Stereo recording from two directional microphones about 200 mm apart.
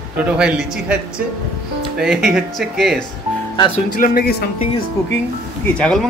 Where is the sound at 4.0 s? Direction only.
50° left (ahead or behind).